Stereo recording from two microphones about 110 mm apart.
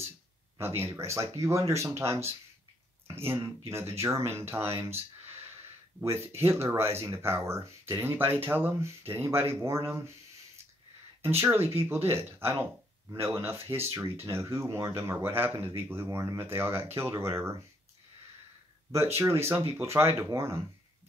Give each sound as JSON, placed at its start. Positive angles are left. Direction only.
{"t": 0.6, "sound": "speech", "side_deg": -20}
{"t": 3.4, "sound": "speech", "side_deg": -25}
{"t": 11.2, "sound": "speech", "side_deg": -20}
{"t": 19.1, "sound": "speech", "side_deg": -25}